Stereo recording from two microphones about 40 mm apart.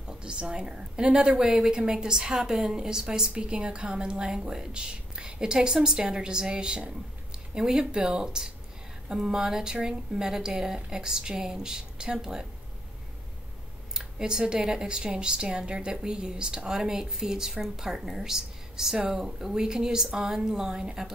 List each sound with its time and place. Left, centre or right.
0.0 s speech: right
13.9 s speech: centre